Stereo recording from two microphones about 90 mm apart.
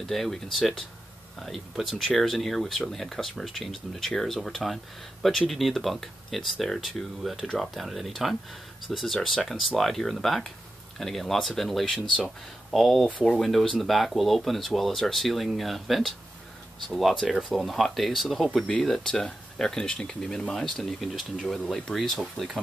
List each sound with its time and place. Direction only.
0.0 s speech: 5° left (ahead or behind)